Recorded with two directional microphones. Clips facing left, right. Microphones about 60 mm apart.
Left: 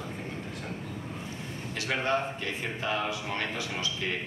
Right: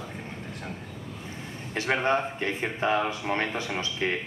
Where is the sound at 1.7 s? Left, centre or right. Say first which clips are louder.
Right 4 dB; right.